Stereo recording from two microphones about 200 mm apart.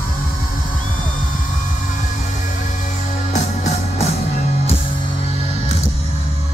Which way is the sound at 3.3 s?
35° left (ahead or behind).